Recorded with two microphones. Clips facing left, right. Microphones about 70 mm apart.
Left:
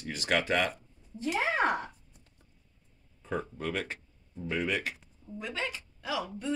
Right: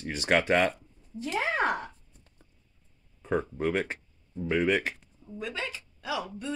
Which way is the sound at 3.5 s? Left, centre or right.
Right.